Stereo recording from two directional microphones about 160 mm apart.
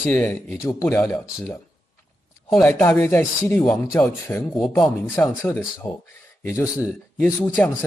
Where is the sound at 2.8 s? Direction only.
10° left (ahead or behind).